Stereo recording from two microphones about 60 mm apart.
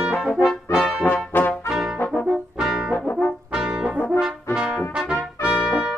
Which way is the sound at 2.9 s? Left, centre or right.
Left.